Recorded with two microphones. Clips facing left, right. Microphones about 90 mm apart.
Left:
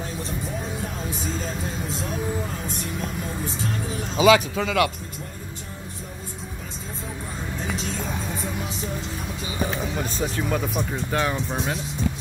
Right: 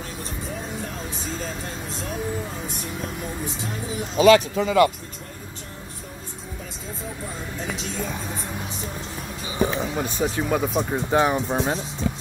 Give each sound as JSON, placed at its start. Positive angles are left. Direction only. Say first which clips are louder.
{"t": 4.6, "sound": "speech", "louder": "right 4 dB", "side_deg": 90}
{"t": 9.5, "sound": "speech", "louder": "right 4 dB", "side_deg": -25}